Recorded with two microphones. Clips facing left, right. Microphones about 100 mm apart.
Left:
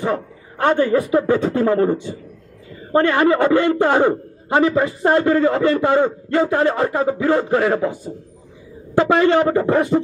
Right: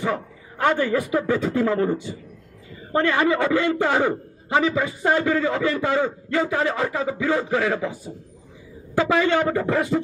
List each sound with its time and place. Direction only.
0.7 s a man's voice: 35° left (ahead or behind)
3.3 s a man's voice: 50° left (ahead or behind)
3.8 s a man's voice: 35° left (ahead or behind)
5.6 s a man's voice: 50° left (ahead or behind)
8.9 s a man's voice: 40° left (ahead or behind)